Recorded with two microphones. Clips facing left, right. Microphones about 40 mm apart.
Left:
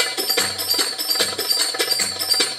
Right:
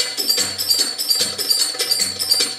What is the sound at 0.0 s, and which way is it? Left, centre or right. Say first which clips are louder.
Music: left 2 dB; left.